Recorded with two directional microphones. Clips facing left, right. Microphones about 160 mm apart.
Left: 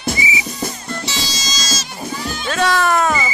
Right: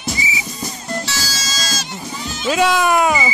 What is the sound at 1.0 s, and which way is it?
Music, 20° left (ahead or behind).